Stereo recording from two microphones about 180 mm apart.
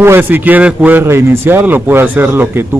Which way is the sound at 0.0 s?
10° right (ahead or behind).